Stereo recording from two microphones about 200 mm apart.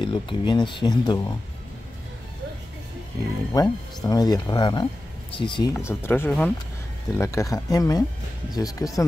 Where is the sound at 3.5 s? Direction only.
20° left (ahead or behind).